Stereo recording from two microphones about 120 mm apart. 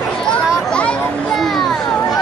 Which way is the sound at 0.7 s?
10° left (ahead or behind).